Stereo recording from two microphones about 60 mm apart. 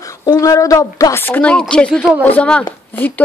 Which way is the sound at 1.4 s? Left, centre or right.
Centre.